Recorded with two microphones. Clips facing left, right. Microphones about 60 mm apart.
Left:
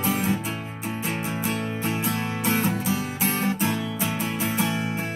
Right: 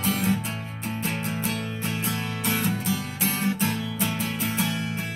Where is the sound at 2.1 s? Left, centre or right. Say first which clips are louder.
Left 3 dB; left.